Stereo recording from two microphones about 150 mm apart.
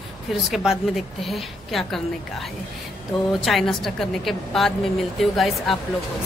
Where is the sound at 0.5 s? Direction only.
Centre (ahead or behind).